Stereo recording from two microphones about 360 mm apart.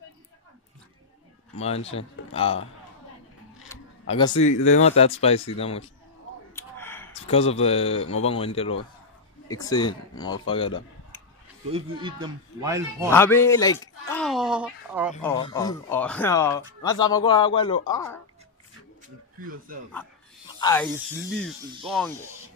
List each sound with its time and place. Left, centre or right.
1.6 s speech: centre
3.7 s camera: centre
4.1 s speech: centre
6.5 s gasp: centre
7.2 s speech: centre
11.7 s speech: centre
13.1 s a sound: centre
15.2 s speech: centre
20.6 s speech: centre